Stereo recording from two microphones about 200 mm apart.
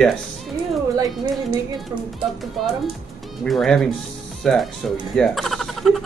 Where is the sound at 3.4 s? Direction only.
Centre (ahead or behind).